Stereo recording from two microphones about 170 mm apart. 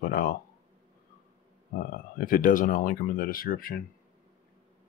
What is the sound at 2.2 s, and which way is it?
Speech, 55° left (ahead or behind).